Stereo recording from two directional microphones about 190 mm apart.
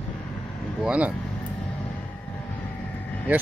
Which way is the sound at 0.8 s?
5° right (ahead or behind).